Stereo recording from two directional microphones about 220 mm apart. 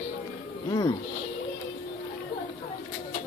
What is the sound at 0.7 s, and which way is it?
Speech, 15° left (ahead or behind).